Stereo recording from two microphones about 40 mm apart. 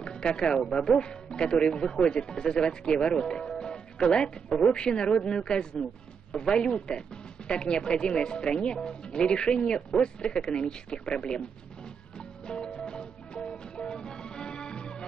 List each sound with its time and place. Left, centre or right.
0.0 s speech: left
12.2 s music: left